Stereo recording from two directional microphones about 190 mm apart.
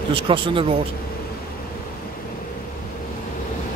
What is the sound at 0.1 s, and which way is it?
Speech, 25° right (ahead or behind).